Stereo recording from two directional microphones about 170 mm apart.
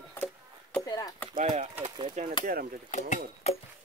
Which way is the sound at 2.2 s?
45° right (ahead or behind).